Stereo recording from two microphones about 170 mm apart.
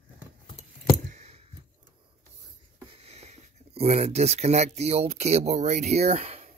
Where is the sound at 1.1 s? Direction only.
40° right (ahead or behind).